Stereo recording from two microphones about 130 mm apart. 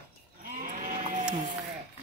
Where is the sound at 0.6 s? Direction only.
90° right.